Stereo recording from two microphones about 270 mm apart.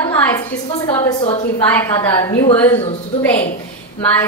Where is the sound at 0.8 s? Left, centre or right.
Centre.